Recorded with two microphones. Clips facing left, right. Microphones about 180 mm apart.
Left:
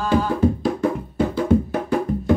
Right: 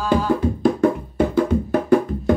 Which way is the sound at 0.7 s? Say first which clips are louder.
Right 3 dB; 55° right (ahead or behind).